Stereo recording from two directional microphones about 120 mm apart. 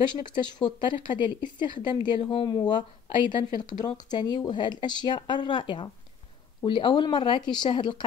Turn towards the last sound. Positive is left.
turn(degrees=40)  # may be behind; listen again after turning